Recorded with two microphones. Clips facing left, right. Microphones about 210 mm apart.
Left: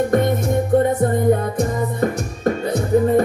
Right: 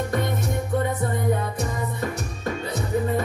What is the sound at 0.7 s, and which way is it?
Music, 50° left (ahead or behind).